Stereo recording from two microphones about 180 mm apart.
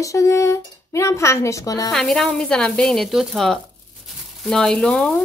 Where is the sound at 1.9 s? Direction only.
5° left (ahead or behind).